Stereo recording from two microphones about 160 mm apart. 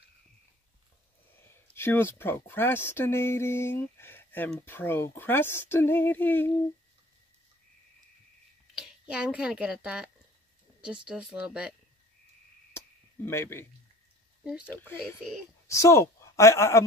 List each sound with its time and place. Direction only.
1.3 s speech: 15° left (ahead or behind)
8.7 s speech: 5° right (ahead or behind)
12.7 s a sound: 15° left (ahead or behind)
14.7 s a woman's voice: 15° left (ahead or behind)